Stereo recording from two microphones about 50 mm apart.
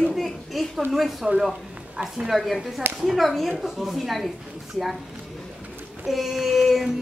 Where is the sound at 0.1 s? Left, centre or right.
Centre.